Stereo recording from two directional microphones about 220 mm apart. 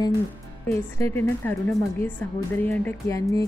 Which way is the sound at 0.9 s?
10° left (ahead or behind).